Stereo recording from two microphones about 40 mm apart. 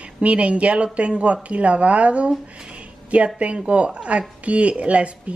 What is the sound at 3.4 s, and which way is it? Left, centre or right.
A woman's voice, right.